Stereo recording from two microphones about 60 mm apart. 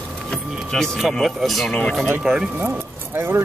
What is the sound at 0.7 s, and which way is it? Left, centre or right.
Speech, centre.